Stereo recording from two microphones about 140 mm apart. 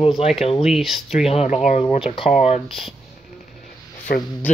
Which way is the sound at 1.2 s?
45° left (ahead or behind).